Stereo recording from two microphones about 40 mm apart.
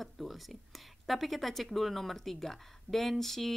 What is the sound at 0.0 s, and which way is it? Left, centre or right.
Speech, centre.